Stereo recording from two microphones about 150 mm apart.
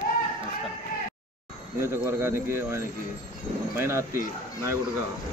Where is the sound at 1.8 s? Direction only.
15° right (ahead or behind).